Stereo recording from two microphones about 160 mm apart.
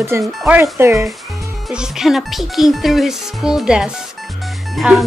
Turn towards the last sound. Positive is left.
turn(degrees=0)  # may be behind; listen again after turning